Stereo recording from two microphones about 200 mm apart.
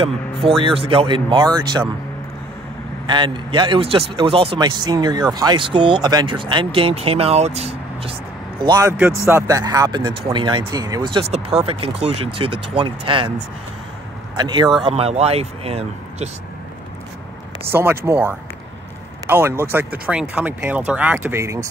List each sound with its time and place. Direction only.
0.0 s speech: 30° right (ahead or behind)
3.1 s speech: 25° right (ahead or behind)
8.6 s speech: 20° right (ahead or behind)
14.3 s a man's voice: 20° right (ahead or behind)
14.9 s speech: 30° right (ahead or behind)
17.6 s speech: 10° right (ahead or behind)